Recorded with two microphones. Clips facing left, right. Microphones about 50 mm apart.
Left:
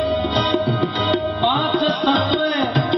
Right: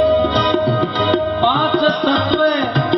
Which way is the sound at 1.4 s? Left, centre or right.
Centre.